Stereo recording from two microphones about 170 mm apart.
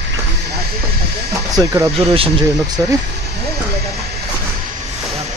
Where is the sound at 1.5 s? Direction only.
20° right (ahead or behind).